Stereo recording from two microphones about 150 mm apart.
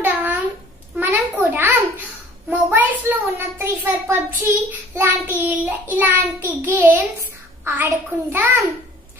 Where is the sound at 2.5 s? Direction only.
10° right (ahead or behind).